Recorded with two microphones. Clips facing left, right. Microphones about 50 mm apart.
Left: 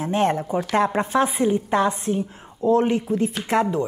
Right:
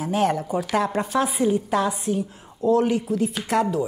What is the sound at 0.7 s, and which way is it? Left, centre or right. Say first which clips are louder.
Speech: left 3 dB; left.